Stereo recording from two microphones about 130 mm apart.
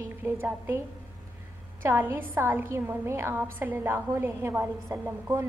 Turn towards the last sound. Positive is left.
turn(degrees=-20)  # may be behind; listen again after turning